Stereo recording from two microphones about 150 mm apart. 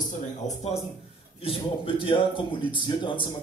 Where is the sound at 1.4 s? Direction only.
35° left (ahead or behind).